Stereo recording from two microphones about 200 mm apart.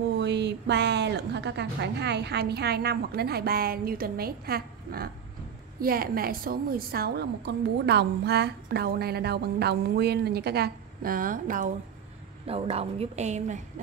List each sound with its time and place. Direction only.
0.2 s a woman's voice: 60° right (ahead or behind); by 11.7 s 40° right (ahead or behind)
12.4 s a woman's voice: 30° right (ahead or behind)